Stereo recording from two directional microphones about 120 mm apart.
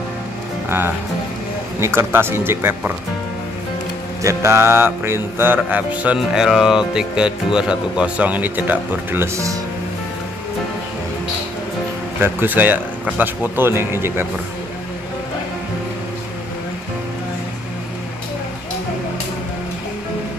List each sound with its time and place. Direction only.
0.7 s speech: 20° right (ahead or behind)
4.2 s mantra: 25° right (ahead or behind)
12.2 s mantra: 15° right (ahead or behind)